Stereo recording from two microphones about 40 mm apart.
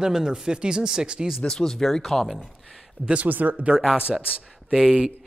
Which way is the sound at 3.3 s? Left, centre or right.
Right.